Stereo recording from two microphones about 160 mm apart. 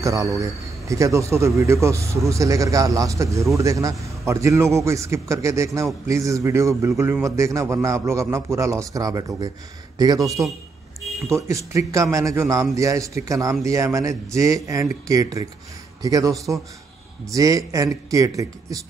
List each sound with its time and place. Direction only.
0.0 s speech: 20° right (ahead or behind)